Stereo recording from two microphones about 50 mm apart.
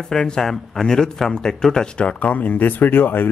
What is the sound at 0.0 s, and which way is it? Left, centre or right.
A man's voice, centre.